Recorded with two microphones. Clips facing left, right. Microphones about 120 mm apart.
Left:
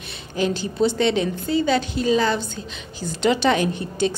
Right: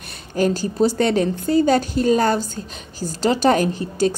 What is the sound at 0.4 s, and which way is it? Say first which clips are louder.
A woman's voice: right 3 dB; 45° right (ahead or behind).